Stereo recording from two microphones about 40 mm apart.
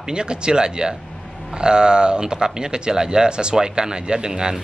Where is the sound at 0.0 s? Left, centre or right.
Right.